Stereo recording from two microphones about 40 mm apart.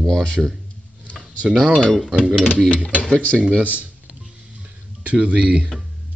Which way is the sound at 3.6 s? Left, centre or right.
Right.